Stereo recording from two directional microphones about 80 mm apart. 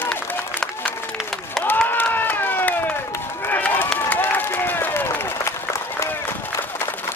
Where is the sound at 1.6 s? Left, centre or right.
Left.